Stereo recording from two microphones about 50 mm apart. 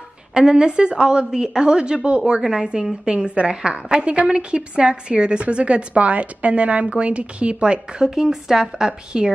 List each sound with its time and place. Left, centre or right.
0.3 s a woman's voice: centre